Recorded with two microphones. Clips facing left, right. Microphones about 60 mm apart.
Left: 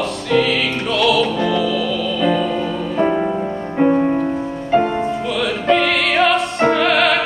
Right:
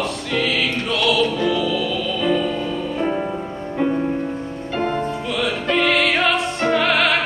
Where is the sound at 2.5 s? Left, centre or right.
Left.